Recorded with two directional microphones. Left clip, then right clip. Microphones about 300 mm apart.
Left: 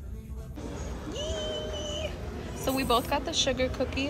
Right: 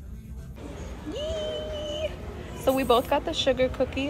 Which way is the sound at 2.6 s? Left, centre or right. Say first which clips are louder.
Right 5 dB; centre.